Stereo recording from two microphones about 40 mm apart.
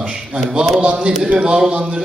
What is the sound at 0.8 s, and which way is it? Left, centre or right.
A man's voice, right.